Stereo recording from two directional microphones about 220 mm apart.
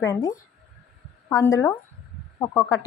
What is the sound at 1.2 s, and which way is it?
A woman's voice, 15° left (ahead or behind).